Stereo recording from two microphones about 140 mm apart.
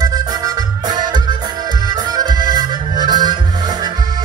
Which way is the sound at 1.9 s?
25° right (ahead or behind).